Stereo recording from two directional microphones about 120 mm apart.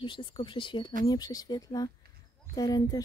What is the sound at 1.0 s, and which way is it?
Speech, 30° left (ahead or behind).